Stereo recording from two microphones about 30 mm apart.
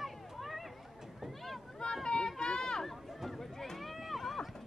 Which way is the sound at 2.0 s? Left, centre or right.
Left.